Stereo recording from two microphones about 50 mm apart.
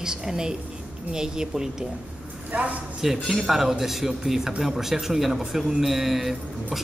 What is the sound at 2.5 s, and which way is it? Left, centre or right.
Speech, right.